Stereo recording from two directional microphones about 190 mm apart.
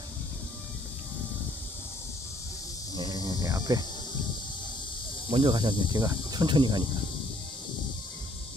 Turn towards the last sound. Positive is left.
turn(degrees=-25)  # may be behind; listen again after turning